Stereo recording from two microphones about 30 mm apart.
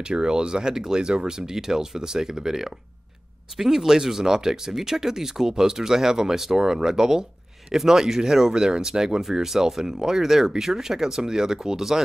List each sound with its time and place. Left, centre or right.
0.0 s speech: right; by 8.5 s centre
8.5 s speech: right